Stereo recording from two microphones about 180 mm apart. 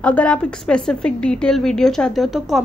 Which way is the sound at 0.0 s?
5° left (ahead or behind).